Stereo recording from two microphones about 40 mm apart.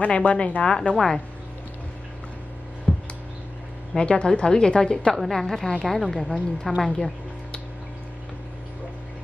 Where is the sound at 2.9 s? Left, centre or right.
Left.